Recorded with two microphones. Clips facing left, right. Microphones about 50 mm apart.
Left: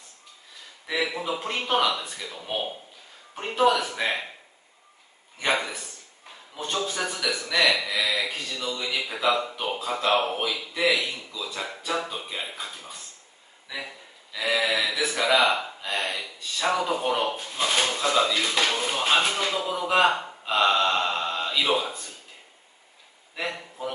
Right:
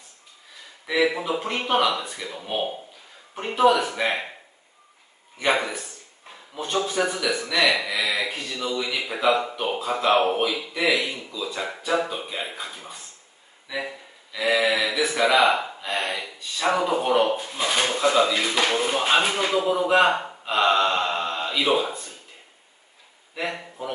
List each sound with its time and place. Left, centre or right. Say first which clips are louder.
0.8 s speech: right 5 dB; centre
3.3 s speech: right 3 dB; centre
5.4 s speech: right 3 dB; centre
11.4 s speech: right 3 dB; right
13.7 s a sound: right 5 dB; centre
14.4 s speech: right 3 dB; centre
19.9 s a man's voice: right 1 dB; centre
20.5 s gasp: right 2 dB; centre